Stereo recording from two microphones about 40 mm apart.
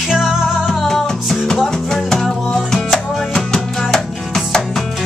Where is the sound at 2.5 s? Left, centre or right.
Centre.